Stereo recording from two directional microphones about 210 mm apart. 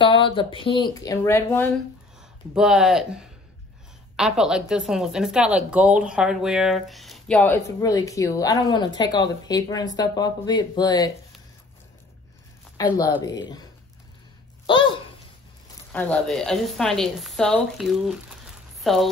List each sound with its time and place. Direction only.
0.0 s speech: 25° left (ahead or behind)
2.5 s a woman's voice: 5° right (ahead or behind); by 11.1 s 20° left (ahead or behind)
12.8 s a woman's voice: 15° left (ahead or behind)
15.9 s a woman's voice: 5° left (ahead or behind)